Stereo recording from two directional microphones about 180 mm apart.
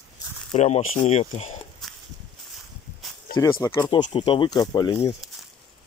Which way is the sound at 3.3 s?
20° left (ahead or behind).